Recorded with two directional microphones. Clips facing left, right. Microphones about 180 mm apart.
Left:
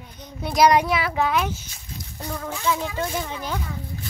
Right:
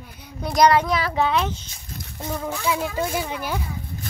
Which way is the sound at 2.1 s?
20° right (ahead or behind).